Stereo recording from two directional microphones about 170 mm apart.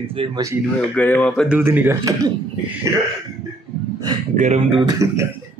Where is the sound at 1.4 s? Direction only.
10° right (ahead or behind).